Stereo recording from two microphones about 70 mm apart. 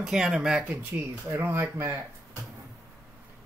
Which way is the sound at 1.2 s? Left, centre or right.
Right.